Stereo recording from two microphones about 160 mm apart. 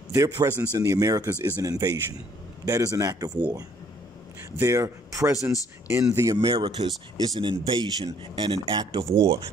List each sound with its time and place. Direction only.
0.1 s speech: 20° right (ahead or behind)
4.6 s speech: 20° right (ahead or behind)
6.4 s speech: 30° right (ahead or behind)